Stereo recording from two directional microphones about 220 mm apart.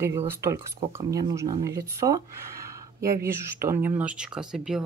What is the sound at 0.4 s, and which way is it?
Speech, 10° right (ahead or behind).